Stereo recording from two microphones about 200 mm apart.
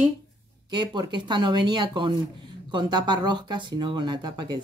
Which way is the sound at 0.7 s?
20° right (ahead or behind).